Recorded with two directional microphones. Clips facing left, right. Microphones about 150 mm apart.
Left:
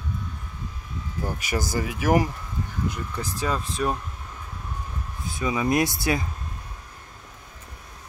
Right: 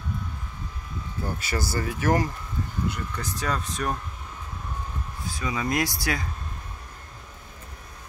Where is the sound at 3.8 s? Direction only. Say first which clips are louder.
Left 4 dB; 15° left (ahead or behind).